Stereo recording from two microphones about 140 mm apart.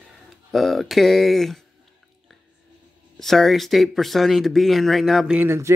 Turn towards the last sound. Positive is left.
turn(degrees=-20)  # may be behind; listen again after turning